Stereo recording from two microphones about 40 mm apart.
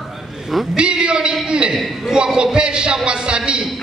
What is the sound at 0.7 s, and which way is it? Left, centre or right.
A man's voice, right.